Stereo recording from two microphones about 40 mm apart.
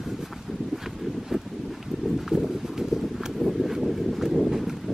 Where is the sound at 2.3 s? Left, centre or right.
Centre.